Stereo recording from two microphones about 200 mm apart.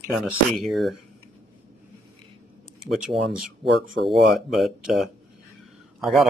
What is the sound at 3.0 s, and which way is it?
Speech, 5° right (ahead or behind).